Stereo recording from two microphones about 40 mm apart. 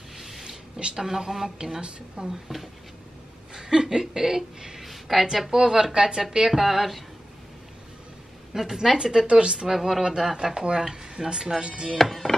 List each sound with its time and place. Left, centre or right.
0.7 s speech: right
1.0 s speech: centre
1.8 s speech: right
2.2 s speech: centre
3.5 s a woman's voice: centre
8.5 s speech: centre
9.7 s speech: centre
10.0 s speech: centre
12.0 s chop: centre